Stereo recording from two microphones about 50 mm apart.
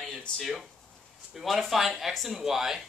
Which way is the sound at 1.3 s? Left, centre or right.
Centre.